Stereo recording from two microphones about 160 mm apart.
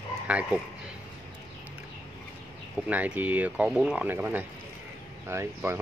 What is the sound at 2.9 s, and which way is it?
Speech, 10° right (ahead or behind).